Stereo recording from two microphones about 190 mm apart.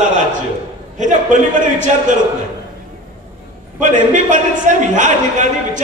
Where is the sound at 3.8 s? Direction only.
40° right (ahead or behind).